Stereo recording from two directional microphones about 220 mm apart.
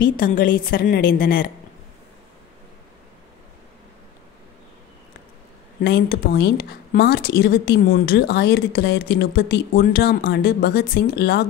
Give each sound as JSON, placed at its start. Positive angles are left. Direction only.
{"t": 0.0, "sound": "a woman's voice", "side_deg": 40}
{"t": 5.8, "sound": "a woman's voice", "side_deg": 45}